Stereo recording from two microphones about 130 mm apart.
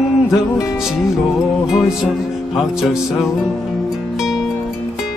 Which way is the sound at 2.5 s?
5° right (ahead or behind).